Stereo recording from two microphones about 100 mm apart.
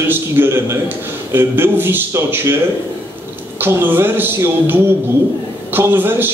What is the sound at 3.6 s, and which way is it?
A man's voice, 20° right (ahead or behind).